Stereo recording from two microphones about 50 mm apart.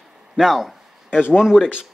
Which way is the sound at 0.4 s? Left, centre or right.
Centre.